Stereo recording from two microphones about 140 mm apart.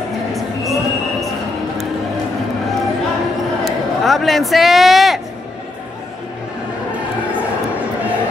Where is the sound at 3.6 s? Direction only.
Centre (ahead or behind).